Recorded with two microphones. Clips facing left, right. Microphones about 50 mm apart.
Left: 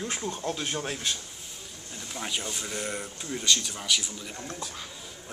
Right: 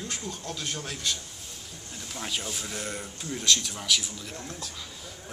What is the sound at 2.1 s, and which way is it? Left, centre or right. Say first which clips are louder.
Speech: left 1 dB; centre.